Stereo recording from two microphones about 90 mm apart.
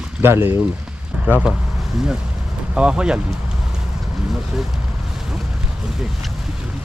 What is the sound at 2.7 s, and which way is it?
Speech, 10° right (ahead or behind).